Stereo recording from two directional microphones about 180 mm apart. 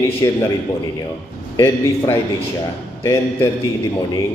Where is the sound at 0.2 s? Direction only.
20° left (ahead or behind).